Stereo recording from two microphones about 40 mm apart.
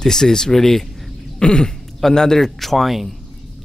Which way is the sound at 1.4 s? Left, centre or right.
Centre.